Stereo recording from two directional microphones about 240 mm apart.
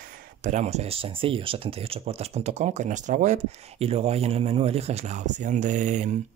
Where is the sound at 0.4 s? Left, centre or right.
Right.